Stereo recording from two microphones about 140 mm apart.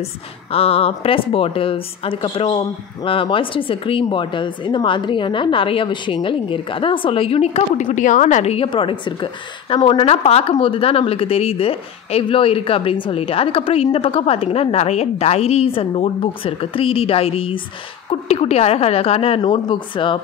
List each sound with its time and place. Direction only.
0.5 s a woman's voice: 45° left (ahead or behind)
7.8 s a woman's voice: 65° left (ahead or behind)
8.6 s a woman's voice: 35° left (ahead or behind)
19.4 s a woman's voice: 35° left (ahead or behind)